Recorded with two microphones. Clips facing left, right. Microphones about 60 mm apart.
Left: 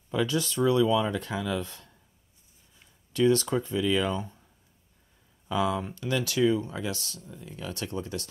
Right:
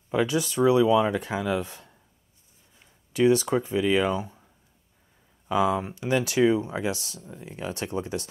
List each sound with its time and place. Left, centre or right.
0.3 s speech: centre
2.8 s a sound: centre
3.7 s speech: right
4.1 s speech: centre
5.5 s speech: right
7.2 s speech: right